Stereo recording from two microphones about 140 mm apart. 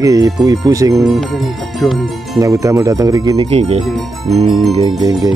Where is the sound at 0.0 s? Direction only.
25° right (ahead or behind).